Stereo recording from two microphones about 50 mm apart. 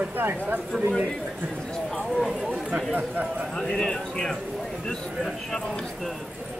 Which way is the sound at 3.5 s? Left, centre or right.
Centre.